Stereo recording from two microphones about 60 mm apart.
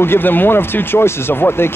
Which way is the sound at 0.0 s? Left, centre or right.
Left.